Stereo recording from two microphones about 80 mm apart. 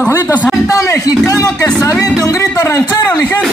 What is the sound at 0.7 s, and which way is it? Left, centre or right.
Speech, left.